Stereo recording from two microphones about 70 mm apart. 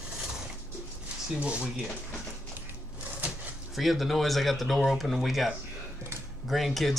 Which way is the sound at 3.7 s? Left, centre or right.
Centre.